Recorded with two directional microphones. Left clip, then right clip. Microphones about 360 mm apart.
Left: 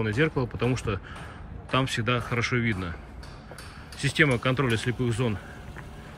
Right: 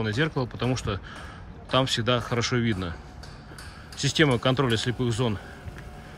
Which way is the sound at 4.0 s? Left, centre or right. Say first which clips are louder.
Right 1 dB; centre.